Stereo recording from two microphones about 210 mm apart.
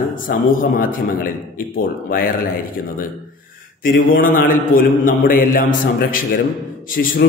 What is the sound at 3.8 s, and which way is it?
A man's voice, 40° left (ahead or behind).